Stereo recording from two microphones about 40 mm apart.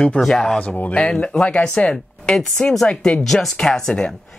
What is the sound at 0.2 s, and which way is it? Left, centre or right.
Speech, centre.